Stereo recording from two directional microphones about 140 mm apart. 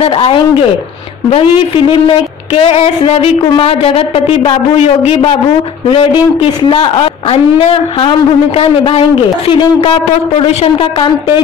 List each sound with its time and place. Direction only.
0.0 s a man's voice: 40° left (ahead or behind)